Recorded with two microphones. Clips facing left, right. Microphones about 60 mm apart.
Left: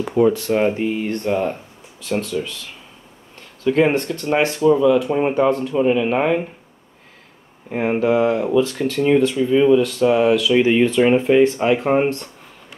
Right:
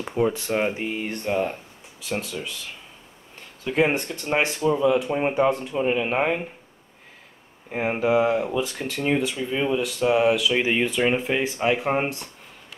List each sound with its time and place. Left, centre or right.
0.5 s speech: centre
5.1 s speech: centre
7.7 s speech: centre